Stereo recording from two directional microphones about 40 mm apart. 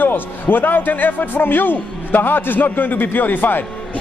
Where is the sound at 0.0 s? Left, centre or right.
Left.